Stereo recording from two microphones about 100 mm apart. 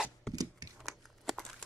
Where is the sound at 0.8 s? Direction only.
Centre (ahead or behind).